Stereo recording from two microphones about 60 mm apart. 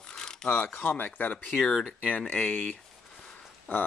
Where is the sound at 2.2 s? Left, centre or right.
Left.